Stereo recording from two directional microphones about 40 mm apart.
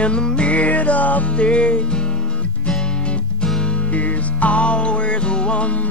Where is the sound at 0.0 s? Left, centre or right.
Left.